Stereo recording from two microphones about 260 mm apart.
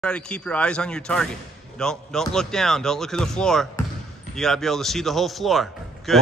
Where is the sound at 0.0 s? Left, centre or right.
Centre.